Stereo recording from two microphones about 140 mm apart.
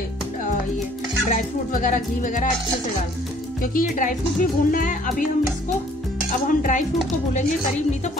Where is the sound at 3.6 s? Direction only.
80° left.